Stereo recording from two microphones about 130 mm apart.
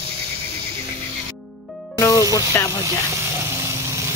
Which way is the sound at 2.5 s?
30° left (ahead or behind).